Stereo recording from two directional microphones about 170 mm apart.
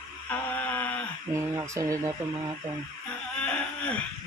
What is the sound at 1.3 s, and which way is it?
Speech, 15° right (ahead or behind).